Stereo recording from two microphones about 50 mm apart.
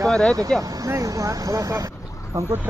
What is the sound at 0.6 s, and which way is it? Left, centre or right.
Speech, right.